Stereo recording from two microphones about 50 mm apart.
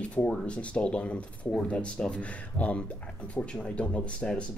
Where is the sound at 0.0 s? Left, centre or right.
Left.